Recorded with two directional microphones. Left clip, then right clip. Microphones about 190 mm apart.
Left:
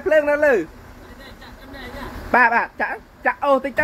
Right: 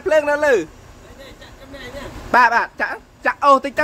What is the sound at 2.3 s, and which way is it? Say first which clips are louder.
A woman's voice: right 2 dB; 10° right (ahead or behind).